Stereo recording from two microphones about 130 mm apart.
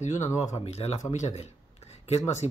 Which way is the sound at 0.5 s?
50° left (ahead or behind).